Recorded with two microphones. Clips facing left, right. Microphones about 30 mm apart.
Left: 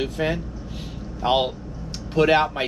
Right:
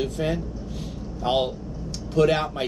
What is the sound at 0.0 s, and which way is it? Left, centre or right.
Speech, left.